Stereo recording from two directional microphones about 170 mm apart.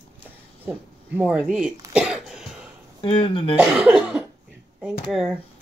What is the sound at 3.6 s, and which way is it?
Cough, 5° right (ahead or behind).